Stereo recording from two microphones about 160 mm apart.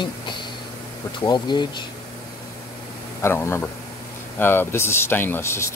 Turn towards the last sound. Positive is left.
turn(degrees=15)  # may be behind; listen again after turning